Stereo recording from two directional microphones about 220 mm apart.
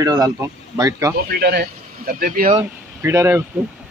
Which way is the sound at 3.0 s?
10° right (ahead or behind).